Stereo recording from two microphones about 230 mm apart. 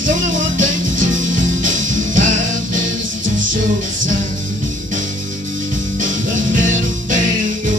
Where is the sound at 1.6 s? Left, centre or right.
Right.